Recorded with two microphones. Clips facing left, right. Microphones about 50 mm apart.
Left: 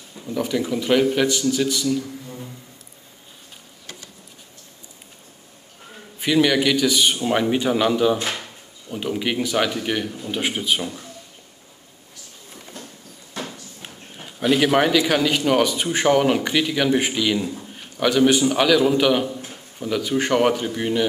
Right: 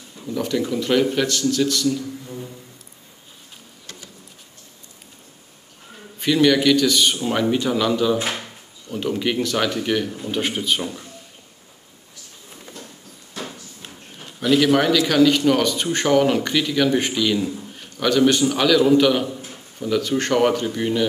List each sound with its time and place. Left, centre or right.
0.3 s a man's voice: centre
6.1 s a man's voice: centre
13.8 s a man's voice: centre